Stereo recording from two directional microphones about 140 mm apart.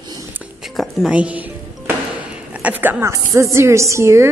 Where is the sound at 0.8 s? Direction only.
5° right (ahead or behind).